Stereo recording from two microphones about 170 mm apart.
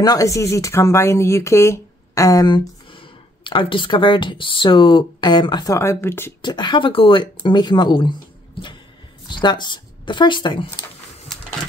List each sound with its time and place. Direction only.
0.0 s speech: 20° left (ahead or behind)
6.4 s speech: 25° left (ahead or behind)